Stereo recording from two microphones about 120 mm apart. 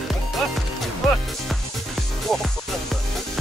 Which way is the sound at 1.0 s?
Centre (ahead or behind).